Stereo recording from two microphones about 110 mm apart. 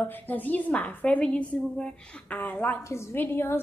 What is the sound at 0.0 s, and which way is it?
A woman's voice, 15° left (ahead or behind).